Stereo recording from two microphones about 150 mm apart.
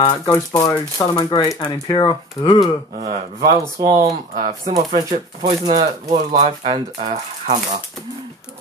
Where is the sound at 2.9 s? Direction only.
55° right (ahead or behind).